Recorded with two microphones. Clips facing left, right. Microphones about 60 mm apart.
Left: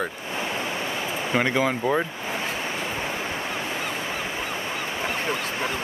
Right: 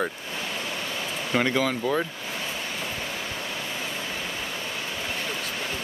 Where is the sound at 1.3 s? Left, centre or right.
Centre.